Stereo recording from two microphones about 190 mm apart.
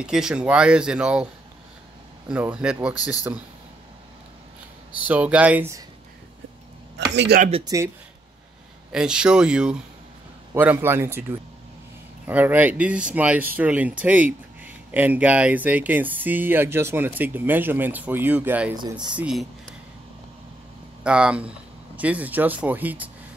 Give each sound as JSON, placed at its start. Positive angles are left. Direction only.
{"t": 0.0, "sound": "speech", "side_deg": -5}
{"t": 5.0, "sound": "speech", "side_deg": -5}
{"t": 7.2, "sound": "speech", "side_deg": -50}
{"t": 7.6, "sound": "speech", "side_deg": -15}
{"t": 8.9, "sound": "speech", "side_deg": -5}
{"t": 21.0, "sound": "speech", "side_deg": -5}